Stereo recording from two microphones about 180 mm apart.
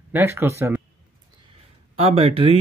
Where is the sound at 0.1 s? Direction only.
10° right (ahead or behind).